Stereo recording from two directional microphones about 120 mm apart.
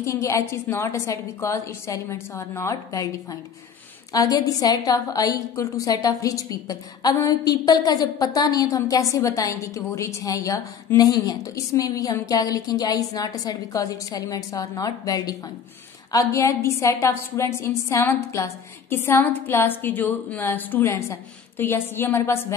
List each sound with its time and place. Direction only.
0.0 s a woman's voice: 25° left (ahead or behind)